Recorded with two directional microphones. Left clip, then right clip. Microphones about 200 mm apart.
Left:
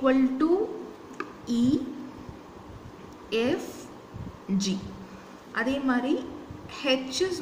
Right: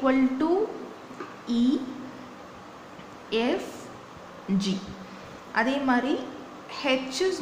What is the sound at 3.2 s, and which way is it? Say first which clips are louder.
Speech: even; 15° right (ahead or behind).